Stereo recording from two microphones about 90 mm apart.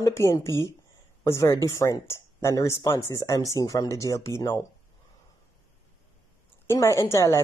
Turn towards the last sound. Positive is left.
turn(degrees=35)  # may be behind; listen again after turning